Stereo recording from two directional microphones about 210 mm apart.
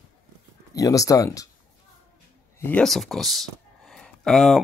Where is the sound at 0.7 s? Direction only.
15° left (ahead or behind).